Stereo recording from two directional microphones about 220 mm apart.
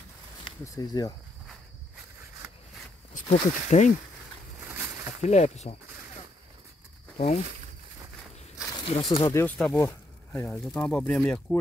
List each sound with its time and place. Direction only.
0.7 s speech: 15° left (ahead or behind)
3.2 s speech: 35° left (ahead or behind)
4.6 s a sound: 10° right (ahead or behind)
5.2 s speech: 30° left (ahead or behind)
8.7 s a sound: 25° left (ahead or behind)
9.1 s speech: 15° left (ahead or behind)